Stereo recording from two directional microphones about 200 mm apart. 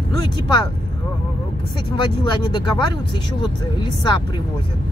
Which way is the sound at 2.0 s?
20° left (ahead or behind).